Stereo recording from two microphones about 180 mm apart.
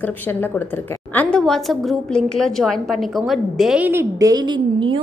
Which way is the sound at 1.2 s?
5° left (ahead or behind).